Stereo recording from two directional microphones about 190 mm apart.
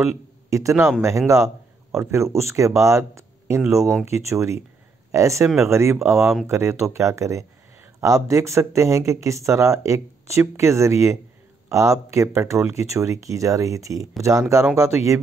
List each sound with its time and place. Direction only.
0.0 s a man's voice: 15° right (ahead or behind)